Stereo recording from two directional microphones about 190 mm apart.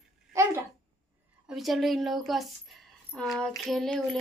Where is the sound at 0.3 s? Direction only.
15° right (ahead or behind).